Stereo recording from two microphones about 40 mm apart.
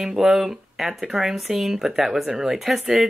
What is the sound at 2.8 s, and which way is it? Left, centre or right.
Speech, centre.